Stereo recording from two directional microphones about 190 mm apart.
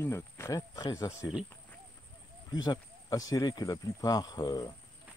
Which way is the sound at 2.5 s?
20° left (ahead or behind).